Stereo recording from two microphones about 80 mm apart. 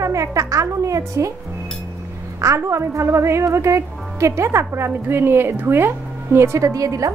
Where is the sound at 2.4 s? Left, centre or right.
Right.